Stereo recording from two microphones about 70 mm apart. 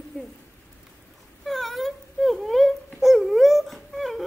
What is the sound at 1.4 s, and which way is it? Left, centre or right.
Wail, centre.